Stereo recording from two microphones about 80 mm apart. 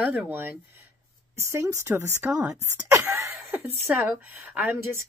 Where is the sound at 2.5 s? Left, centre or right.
Right.